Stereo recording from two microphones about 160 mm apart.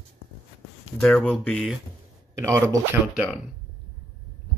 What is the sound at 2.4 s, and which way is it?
Speech, 20° right (ahead or behind).